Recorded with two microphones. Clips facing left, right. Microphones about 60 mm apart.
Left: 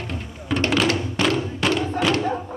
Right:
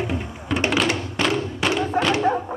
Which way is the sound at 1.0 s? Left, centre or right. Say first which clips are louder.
Left 1 dB; centre.